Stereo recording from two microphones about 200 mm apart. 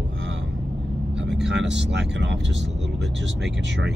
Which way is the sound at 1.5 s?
60° right (ahead or behind).